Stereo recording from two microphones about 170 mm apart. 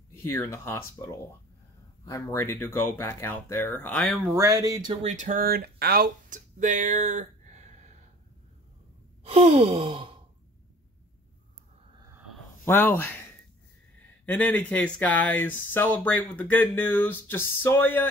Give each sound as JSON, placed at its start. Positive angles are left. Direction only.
{"t": 0.2, "sound": "speech", "side_deg": 15}
{"t": 2.3, "sound": "speech", "side_deg": 15}
{"t": 4.3, "sound": "speech", "side_deg": -20}
{"t": 5.0, "sound": "speech", "side_deg": -45}
{"t": 9.2, "sound": "sigh", "side_deg": -35}
{"t": 12.6, "sound": "speech", "side_deg": 15}
{"t": 14.2, "sound": "speech", "side_deg": 10}